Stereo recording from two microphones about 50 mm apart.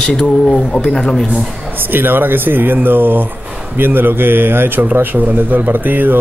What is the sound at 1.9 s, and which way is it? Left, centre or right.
A man's voice, right.